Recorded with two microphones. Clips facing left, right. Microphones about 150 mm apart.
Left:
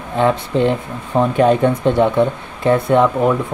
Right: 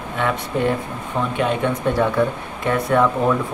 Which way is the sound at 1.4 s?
40° left (ahead or behind).